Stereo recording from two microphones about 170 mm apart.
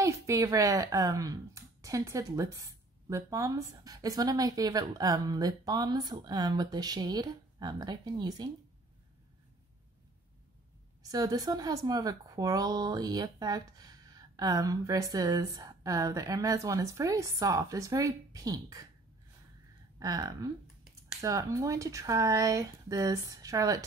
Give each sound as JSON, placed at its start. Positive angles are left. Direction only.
{"t": 0.0, "sound": "speech", "side_deg": -20}
{"t": 11.1, "sound": "speech", "side_deg": -20}
{"t": 20.0, "sound": "speech", "side_deg": -20}